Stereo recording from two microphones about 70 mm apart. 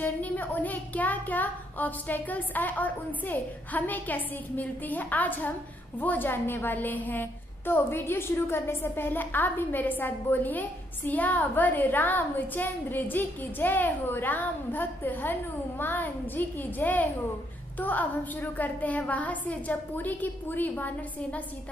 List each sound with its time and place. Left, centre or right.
0.0 s a woman's voice: left